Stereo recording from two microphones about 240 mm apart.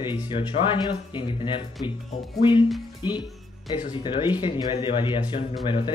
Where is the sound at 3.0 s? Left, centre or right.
Centre.